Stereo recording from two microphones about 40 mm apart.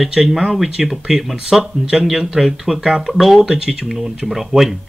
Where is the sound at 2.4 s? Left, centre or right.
Centre.